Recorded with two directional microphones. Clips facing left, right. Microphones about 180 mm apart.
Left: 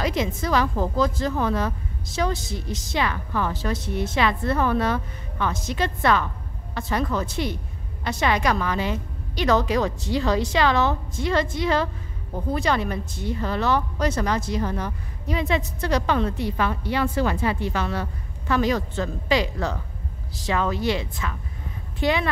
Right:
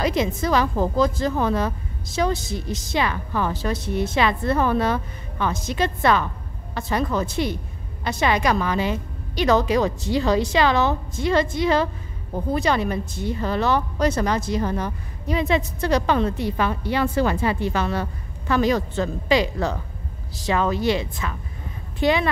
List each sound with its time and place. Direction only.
0.0 s a woman's voice: 20° right (ahead or behind)
17.1 s speech: 35° right (ahead or behind); by 22.3 s 20° right (ahead or behind)